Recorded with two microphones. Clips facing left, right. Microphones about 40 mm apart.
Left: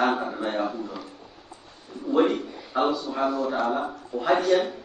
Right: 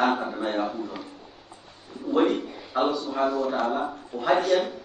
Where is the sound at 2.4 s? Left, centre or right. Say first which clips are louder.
Even; right.